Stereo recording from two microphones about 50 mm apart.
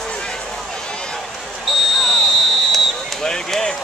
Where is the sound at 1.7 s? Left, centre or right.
Centre.